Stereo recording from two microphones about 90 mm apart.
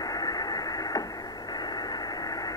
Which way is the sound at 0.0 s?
45° left (ahead or behind).